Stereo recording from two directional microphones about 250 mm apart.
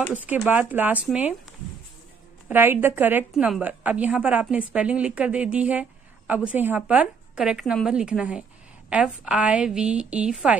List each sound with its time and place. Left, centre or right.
0.1 s a woman's voice: centre
2.4 s a woman's voice: centre